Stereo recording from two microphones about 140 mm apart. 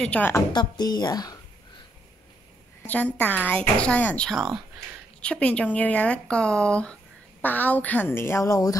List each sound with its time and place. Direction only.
0.0 s speech: 10° left (ahead or behind)
0.5 s speech: 30° left (ahead or behind)
2.9 s speech: 10° left (ahead or behind)